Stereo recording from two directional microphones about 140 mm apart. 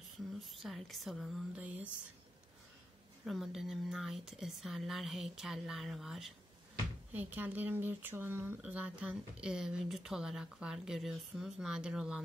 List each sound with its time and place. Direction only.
0.6 s speech: centre (ahead or behind)
3.3 s speech: centre (ahead or behind)
7.1 s speech: 10° right (ahead or behind)